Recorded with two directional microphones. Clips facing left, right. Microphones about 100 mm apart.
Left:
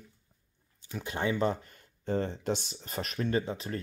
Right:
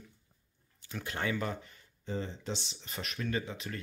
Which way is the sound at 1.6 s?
50° left (ahead or behind).